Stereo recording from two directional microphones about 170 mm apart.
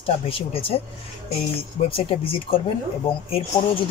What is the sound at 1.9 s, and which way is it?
Speech, 30° left (ahead or behind).